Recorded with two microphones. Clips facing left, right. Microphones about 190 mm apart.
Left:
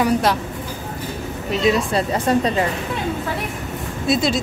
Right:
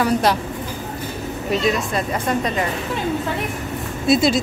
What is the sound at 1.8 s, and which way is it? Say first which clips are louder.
Speech: left 3 dB; 30° left (ahead or behind).